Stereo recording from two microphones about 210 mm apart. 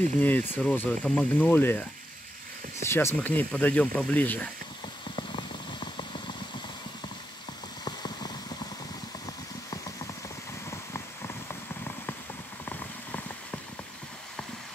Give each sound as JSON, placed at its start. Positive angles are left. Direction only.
{"t": 0.2, "sound": "speech", "side_deg": 10}
{"t": 5.1, "sound": "a sound", "side_deg": 20}
{"t": 7.8, "sound": "vehicle", "side_deg": 20}
{"t": 12.6, "sound": "vehicle", "side_deg": 10}